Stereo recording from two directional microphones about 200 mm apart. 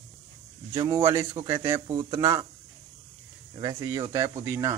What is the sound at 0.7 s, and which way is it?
A man's voice, 15° right (ahead or behind).